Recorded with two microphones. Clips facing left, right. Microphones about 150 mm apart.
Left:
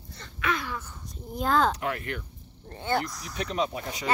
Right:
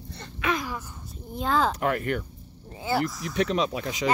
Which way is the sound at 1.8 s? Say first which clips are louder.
Right 6 dB; 50° right (ahead or behind).